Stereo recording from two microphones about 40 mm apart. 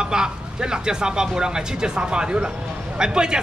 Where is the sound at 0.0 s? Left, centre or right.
Centre.